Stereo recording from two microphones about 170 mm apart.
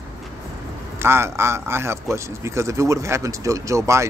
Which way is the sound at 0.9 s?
15° right (ahead or behind).